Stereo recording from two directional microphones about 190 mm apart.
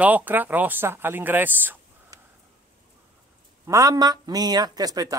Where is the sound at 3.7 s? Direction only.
20° right (ahead or behind).